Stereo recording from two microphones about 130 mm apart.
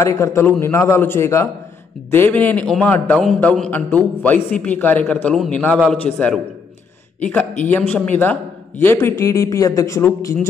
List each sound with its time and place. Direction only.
0.0 s a man's voice: 20° left (ahead or behind)